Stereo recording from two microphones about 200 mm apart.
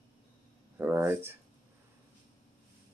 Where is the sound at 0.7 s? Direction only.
10° right (ahead or behind).